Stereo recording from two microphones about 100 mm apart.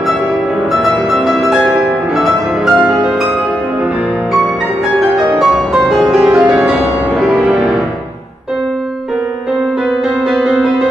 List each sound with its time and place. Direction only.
0.8 s music: centre (ahead or behind)
5.1 s music: 5° right (ahead or behind)
10.4 s music: 5° right (ahead or behind)